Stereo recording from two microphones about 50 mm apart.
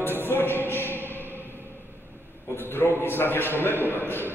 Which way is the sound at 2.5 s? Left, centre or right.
Left.